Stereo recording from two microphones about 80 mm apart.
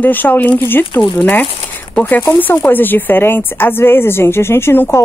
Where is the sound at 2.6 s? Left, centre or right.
Left.